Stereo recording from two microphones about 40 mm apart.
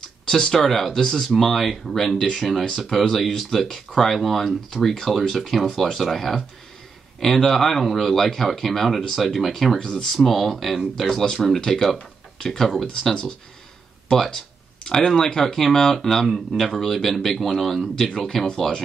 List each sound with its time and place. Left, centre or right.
0.3 s speech: centre
9.8 s speech: left
10.1 s speech: centre
14.1 s speech: centre